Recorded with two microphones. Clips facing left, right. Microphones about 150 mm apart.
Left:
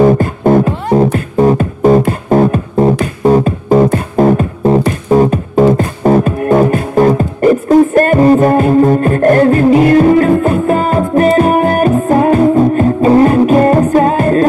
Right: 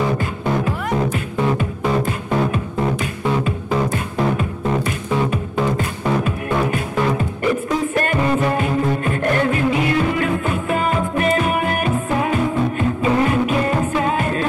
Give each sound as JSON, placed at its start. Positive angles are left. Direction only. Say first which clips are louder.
{"t": 0.0, "sound": "music", "louder": "left 12 dB", "side_deg": 45}